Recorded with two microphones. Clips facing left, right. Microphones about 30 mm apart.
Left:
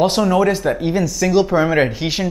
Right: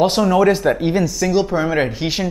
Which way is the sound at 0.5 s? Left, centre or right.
Centre.